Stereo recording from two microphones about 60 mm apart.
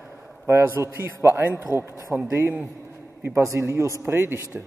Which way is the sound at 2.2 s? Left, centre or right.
Right.